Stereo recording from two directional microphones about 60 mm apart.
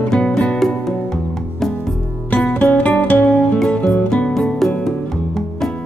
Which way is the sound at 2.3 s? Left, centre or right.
Left.